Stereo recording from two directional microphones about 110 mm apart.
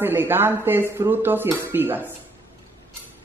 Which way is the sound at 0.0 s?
20° right (ahead or behind).